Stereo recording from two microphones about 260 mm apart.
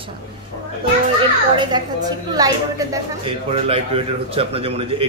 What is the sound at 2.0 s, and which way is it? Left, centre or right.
A woman's voice, centre.